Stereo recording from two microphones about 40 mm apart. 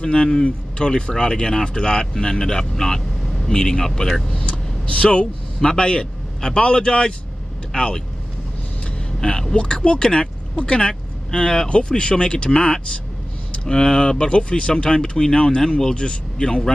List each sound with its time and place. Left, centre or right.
0.0 s speech: centre
4.5 s speech: left
9.2 s speech: centre